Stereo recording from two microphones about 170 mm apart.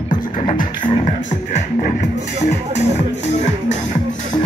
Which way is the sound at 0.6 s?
50° left (ahead or behind).